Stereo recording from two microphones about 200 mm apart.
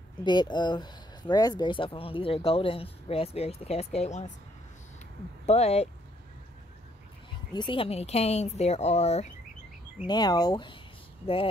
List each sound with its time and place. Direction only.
0.2 s speech: 20° left (ahead or behind)
5.5 s speech: 30° left (ahead or behind)
7.5 s speech: 25° left (ahead or behind)
10.0 s speech: 20° left (ahead or behind)